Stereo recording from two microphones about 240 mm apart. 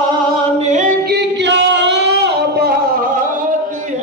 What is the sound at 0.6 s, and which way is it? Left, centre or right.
Singing, right.